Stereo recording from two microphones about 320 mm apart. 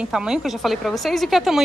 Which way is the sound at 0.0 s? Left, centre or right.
Centre.